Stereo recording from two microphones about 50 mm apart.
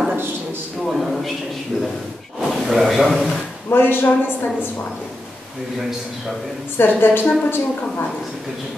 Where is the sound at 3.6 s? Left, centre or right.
Left.